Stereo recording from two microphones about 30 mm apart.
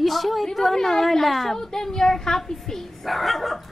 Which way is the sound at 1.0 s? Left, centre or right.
Centre.